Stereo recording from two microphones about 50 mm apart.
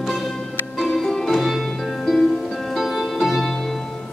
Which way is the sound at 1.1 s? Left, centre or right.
Centre.